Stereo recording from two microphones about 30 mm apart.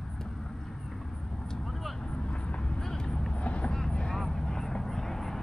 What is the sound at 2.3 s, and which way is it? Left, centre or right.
Vehicle, left.